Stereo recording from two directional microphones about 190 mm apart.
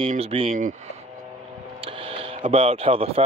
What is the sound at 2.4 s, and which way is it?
Speech, 35° right (ahead or behind).